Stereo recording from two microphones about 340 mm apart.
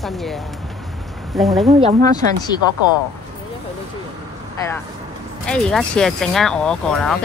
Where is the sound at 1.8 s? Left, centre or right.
Centre.